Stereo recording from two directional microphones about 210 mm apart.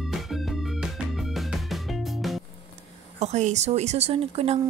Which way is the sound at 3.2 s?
35° right (ahead or behind).